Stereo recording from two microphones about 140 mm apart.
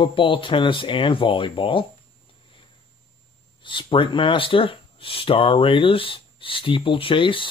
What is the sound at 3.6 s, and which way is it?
Speech, 35° left (ahead or behind).